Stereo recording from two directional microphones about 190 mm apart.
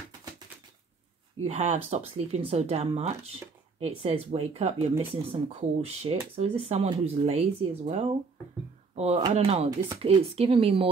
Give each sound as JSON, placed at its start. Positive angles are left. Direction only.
{"t": 1.4, "sound": "speech", "side_deg": -35}